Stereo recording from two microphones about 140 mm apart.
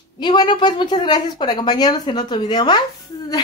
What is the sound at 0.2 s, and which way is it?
Speech, 35° left (ahead or behind).